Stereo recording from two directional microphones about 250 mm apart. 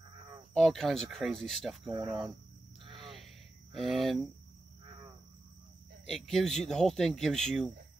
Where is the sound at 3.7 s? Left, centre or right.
Centre.